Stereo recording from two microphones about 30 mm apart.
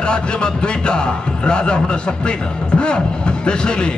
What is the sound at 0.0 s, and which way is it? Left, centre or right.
A man's voice, left.